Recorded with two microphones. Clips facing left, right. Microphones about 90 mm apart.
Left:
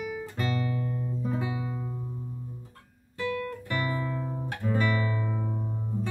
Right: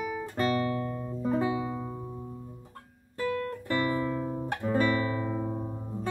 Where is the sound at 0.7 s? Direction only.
60° right (ahead or behind).